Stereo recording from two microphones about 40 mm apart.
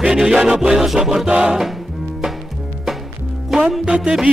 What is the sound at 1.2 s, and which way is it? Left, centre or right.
Music, right.